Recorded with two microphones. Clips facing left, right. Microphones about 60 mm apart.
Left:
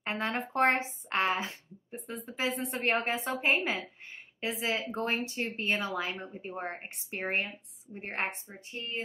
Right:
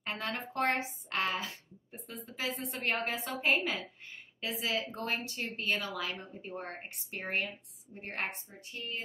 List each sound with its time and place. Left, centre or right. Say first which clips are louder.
0.0 s speech: left 5 dB; left